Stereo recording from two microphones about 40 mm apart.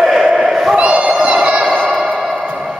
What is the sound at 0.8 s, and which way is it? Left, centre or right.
Crowd, right.